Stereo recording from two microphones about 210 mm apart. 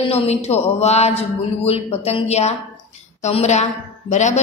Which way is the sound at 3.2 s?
35° left (ahead or behind).